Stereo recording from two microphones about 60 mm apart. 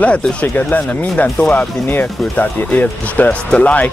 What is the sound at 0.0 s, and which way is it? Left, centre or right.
Speech, left.